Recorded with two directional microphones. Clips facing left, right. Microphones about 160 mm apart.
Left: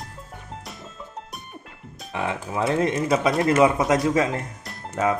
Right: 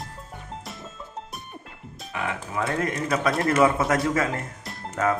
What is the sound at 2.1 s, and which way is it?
Speech, 25° left (ahead or behind).